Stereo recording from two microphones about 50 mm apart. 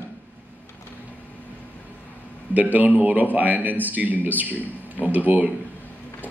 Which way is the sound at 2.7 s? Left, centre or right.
Right.